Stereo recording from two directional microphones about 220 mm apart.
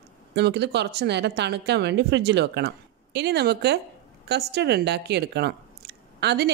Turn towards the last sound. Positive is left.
turn(degrees=-50)  # may be behind; listen again after turning